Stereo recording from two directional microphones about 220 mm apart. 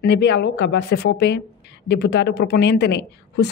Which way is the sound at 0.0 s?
50° left (ahead or behind).